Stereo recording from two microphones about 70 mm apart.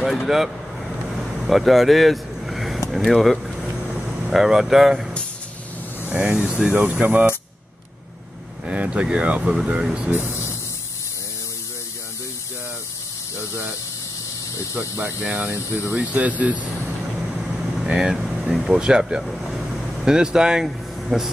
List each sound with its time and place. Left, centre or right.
0.0 s vehicle: centre
4.3 s speech: centre
6.2 s speech: centre
8.6 s speech: centre
10.2 s a sound: left
13.5 s a sound: right
14.7 s speech: right
15.2 s speech: centre
17.2 s vehicle: centre
18.5 s speech: centre
19.2 s vehicle: centre
20.1 s speech: centre